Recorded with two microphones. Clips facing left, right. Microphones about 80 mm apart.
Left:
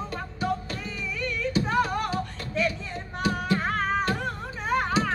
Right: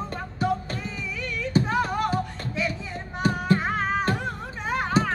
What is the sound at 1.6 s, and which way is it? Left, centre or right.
Music, centre.